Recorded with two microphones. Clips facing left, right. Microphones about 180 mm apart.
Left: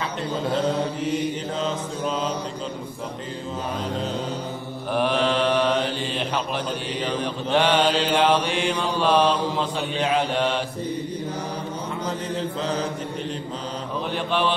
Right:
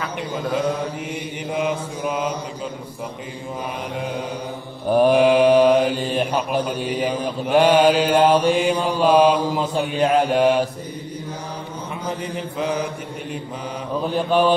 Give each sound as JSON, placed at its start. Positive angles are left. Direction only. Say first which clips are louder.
{"t": 0.5, "sound": "mantra", "louder": "right 1 dB", "side_deg": -10}
{"t": 5.1, "sound": "mantra", "louder": "right 8 dB", "side_deg": -10}
{"t": 12.4, "sound": "mantra", "louder": "right 3 dB", "side_deg": -10}
{"t": 14.0, "sound": "a man's voice", "louder": "right 6 dB", "side_deg": -40}